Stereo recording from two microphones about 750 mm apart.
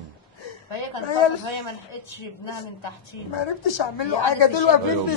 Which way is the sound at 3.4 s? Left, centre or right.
Left.